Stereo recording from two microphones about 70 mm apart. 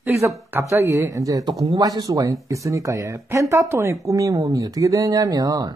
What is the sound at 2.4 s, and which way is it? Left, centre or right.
Speech, right.